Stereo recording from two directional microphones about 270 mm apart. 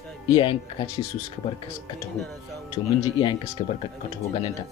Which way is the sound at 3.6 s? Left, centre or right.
Left.